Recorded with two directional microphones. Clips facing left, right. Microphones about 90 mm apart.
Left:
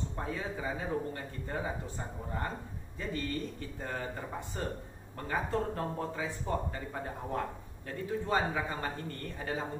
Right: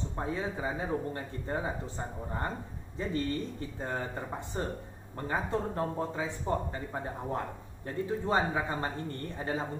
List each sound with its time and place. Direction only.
0.1 s speech: 25° right (ahead or behind)